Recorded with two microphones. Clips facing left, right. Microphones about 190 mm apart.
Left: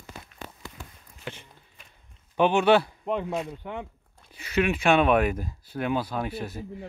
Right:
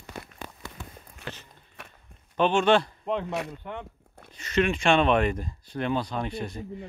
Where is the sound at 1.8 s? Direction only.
75° right (ahead or behind).